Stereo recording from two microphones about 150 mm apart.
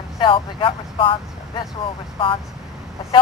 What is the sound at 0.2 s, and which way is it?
Speech, 35° left (ahead or behind).